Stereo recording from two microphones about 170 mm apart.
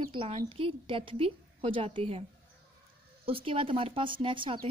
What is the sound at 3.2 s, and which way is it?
A woman's voice, 30° right (ahead or behind).